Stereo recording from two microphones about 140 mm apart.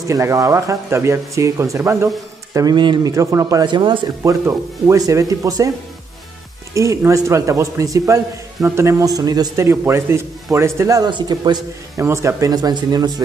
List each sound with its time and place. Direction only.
0.1 s a man's voice: 20° right (ahead or behind)
3.6 s speech: 35° right (ahead or behind)
4.2 s a man's voice: 20° right (ahead or behind)
6.7 s a man's voice: 20° right (ahead or behind)
12.0 s a man's voice: 20° right (ahead or behind)